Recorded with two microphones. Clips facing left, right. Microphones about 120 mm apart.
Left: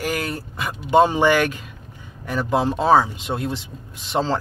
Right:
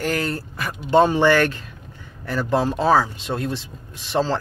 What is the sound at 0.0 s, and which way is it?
Speech, 10° left (ahead or behind).